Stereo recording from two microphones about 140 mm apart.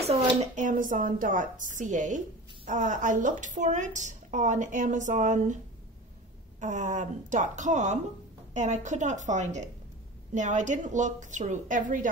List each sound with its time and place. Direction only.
0.0 s speech: 60° right (ahead or behind)
6.6 s speech: 65° right (ahead or behind)